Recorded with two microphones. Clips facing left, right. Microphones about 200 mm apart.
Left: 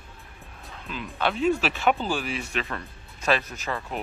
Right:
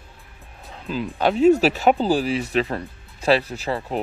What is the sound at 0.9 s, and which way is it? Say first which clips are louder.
Speech: right 7 dB; 35° right (ahead or behind).